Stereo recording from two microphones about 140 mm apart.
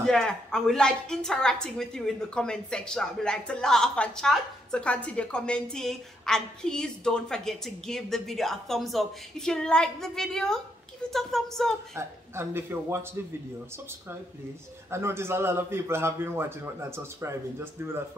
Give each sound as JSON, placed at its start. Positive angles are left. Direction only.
{"t": 0.0, "sound": "a woman's voice", "side_deg": 5}
{"t": 11.9, "sound": "a man's voice", "side_deg": -15}
{"t": 14.9, "sound": "a man's voice", "side_deg": -20}